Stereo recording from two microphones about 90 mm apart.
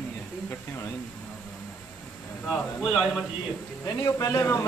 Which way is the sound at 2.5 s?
Centre (ahead or behind).